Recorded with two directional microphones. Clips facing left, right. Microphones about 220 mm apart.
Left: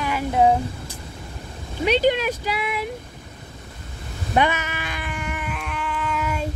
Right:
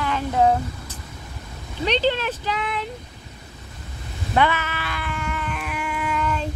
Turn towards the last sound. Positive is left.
turn(degrees=10)  # may be behind; listen again after turning